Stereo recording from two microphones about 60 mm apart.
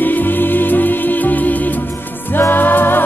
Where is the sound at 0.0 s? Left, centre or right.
Left.